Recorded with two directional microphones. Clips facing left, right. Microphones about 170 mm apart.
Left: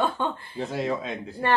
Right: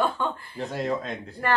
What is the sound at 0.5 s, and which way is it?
Speech, centre (ahead or behind).